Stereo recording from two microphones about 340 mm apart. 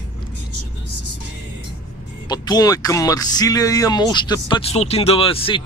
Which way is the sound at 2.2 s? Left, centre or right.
Centre.